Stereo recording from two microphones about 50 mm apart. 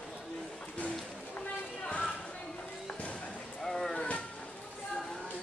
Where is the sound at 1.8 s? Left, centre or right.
Left.